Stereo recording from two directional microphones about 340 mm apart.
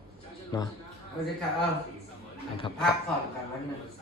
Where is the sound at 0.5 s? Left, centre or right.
Centre.